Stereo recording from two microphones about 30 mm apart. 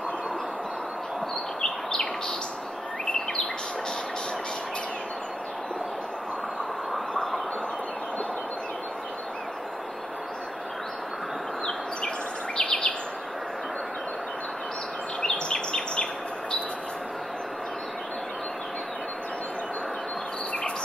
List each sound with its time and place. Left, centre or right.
12.5 s bird vocalization: left
15.2 s bird vocalization: left